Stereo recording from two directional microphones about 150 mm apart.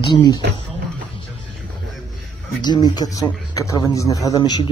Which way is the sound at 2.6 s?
30° left (ahead or behind).